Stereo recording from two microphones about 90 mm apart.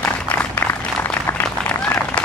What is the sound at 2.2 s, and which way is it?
Applause, 15° left (ahead or behind).